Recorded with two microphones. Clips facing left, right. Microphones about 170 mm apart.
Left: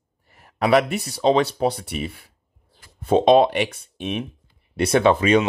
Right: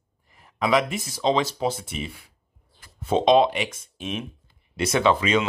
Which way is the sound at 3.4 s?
60° left (ahead or behind).